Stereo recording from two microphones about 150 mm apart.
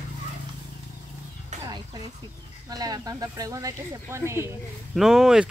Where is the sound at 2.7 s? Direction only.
25° right (ahead or behind).